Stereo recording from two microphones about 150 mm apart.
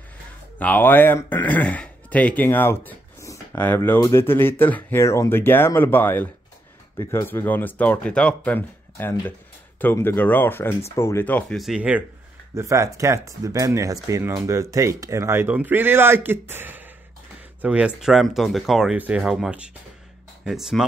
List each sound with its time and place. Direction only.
0.6 s speech: 10° left (ahead or behind); by 12.0 s 5° right (ahead or behind)
12.5 s speech: 20° right (ahead or behind); by 20.8 s centre (ahead or behind)